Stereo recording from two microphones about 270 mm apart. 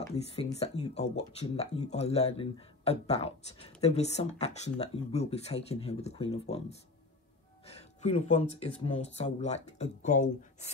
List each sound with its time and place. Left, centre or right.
0.1 s speech: left
7.6 s speech: left